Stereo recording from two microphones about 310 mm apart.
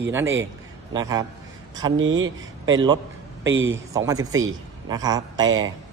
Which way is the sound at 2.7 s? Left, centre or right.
Centre.